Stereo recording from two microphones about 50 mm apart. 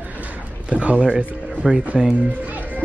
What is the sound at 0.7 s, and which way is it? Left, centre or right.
Speech, right.